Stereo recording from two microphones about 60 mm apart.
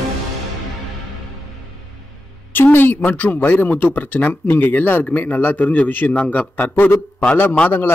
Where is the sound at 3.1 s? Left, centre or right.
Left.